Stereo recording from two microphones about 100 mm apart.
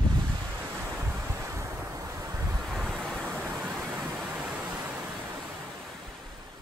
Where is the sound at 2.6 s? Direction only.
5° left (ahead or behind).